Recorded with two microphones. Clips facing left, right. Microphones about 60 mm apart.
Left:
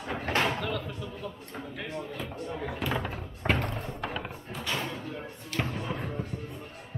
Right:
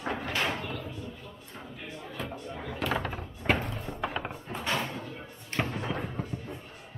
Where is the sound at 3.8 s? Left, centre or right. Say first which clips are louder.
Right 1 dB; centre.